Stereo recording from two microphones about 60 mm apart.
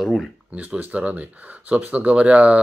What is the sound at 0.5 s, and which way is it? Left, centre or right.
Speech, right.